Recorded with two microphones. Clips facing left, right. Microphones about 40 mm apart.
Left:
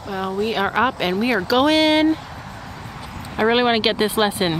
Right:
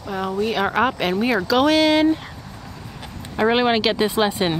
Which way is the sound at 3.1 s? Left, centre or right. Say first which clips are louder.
Left 3 dB; left.